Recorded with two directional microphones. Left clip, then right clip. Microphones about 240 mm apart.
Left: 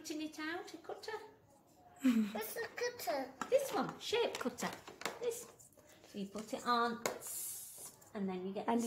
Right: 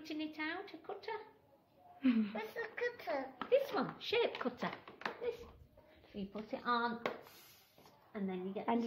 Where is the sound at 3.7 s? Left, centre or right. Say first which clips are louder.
Even; right.